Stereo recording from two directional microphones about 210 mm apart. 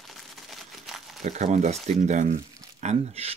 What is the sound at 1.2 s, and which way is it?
Speech, 35° right (ahead or behind).